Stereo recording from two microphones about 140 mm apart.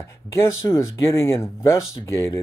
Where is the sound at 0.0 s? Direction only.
20° left (ahead or behind).